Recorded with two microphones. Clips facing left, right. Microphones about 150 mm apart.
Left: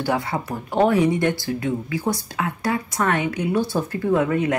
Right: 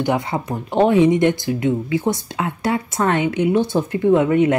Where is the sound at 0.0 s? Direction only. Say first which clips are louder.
Right 3 dB; 20° right (ahead or behind).